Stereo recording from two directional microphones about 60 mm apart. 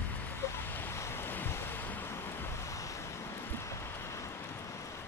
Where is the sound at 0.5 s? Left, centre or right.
Left.